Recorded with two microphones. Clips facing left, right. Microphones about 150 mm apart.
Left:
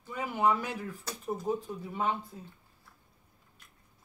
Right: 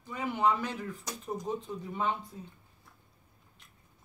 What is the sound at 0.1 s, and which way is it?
Speech, 10° left (ahead or behind).